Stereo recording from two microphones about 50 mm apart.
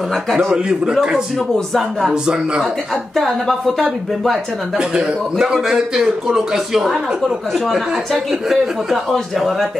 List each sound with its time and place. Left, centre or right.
0.5 s a man's voice: centre
1.7 s a man's voice: centre
2.2 s a man's voice: centre
2.9 s a man's voice: centre
4.7 s a man's voice: centre